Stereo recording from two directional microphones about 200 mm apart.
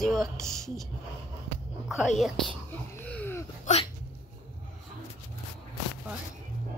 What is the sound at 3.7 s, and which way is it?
Hiccup, 40° left (ahead or behind).